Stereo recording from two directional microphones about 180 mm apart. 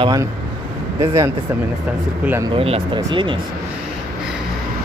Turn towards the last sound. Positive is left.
turn(degrees=-25)  # may be behind; listen again after turning